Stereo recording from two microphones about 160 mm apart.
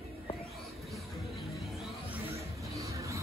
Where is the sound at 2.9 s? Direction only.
20° right (ahead or behind).